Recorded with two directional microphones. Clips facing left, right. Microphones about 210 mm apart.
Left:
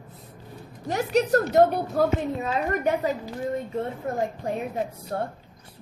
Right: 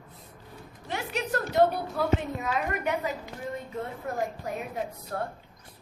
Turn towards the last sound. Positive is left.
turn(degrees=30)  # may be behind; listen again after turning